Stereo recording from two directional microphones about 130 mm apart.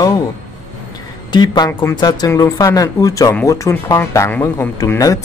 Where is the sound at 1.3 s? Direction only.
35° left (ahead or behind).